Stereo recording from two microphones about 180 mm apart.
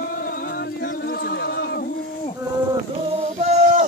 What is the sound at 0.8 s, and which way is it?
Music, 60° left (ahead or behind).